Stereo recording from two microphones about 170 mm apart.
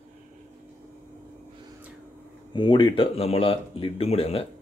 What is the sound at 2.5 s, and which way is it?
Speech, 30° left (ahead or behind).